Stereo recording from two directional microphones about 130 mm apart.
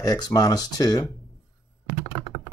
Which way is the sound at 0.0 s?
30° left (ahead or behind).